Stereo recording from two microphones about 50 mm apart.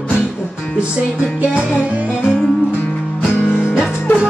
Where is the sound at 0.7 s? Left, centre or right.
Centre.